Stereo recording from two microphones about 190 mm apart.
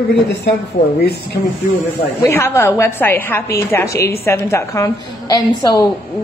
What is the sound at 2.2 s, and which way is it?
A woman's voice, 15° left (ahead or behind).